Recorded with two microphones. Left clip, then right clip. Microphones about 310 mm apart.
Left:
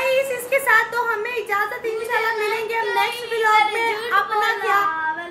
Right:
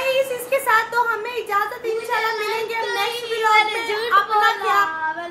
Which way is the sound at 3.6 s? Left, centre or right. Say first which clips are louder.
Even; right.